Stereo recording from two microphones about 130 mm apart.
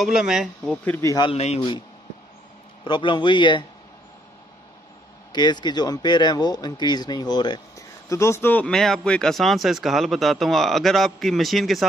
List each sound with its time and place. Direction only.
0.0 s speech: 5° right (ahead or behind)
0.8 s speech: 15° left (ahead or behind)
1.3 s speech: 50° left (ahead or behind)
2.8 s speech: 40° left (ahead or behind)
5.3 s speech: 35° left (ahead or behind); by 11.8 s centre (ahead or behind)